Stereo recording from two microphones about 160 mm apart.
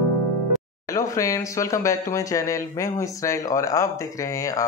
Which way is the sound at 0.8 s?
20° left (ahead or behind).